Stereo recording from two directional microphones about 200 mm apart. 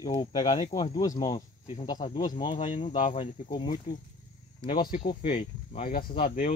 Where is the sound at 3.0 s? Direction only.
35° left (ahead or behind).